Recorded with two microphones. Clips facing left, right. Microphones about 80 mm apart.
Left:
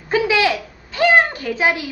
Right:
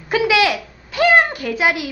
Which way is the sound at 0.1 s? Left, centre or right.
Centre.